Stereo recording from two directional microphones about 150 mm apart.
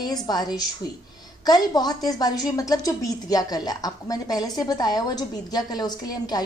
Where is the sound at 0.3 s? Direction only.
25° left (ahead or behind).